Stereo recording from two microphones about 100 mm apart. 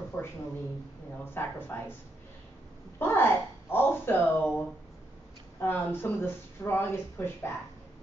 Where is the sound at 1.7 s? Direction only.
20° left (ahead or behind).